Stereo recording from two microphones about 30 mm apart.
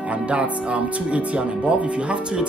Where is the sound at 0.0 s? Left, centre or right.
Right.